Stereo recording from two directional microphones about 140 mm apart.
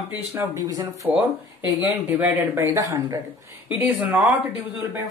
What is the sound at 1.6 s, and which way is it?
Speech, 15° right (ahead or behind).